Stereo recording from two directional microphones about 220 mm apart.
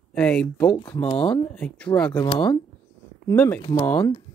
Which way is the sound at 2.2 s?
20° left (ahead or behind).